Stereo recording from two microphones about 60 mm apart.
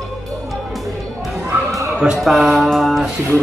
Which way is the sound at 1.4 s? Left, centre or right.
Right.